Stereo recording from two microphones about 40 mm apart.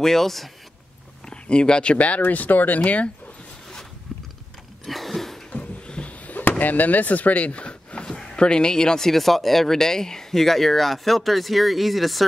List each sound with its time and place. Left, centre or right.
0.0 s speech: centre
1.3 s speech: left
2.2 s speech: left
4.8 s a sound: centre
5.5 s a sound: left
6.2 s chop: left
6.6 s speech: left
7.9 s a sound: centre
8.4 s speech: left
9.1 s speech: centre